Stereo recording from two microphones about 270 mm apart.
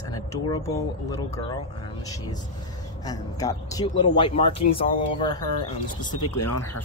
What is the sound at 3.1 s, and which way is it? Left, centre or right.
Speech, centre.